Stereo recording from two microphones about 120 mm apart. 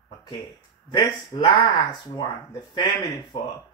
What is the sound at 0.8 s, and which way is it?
Speech, 40° left (ahead or behind).